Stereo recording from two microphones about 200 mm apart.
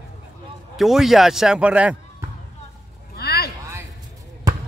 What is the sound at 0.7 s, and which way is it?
Speech, centre (ahead or behind).